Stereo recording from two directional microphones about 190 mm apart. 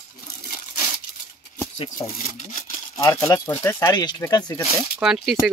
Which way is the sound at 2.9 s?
10° left (ahead or behind).